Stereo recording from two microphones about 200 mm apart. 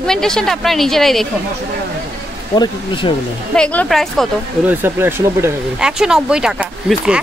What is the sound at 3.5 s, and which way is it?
Speech, 5° left (ahead or behind).